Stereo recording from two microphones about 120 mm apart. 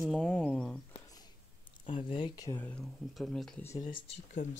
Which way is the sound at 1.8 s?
45° left (ahead or behind).